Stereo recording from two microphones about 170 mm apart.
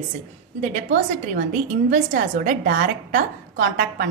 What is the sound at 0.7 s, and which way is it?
Speech, 50° right (ahead or behind).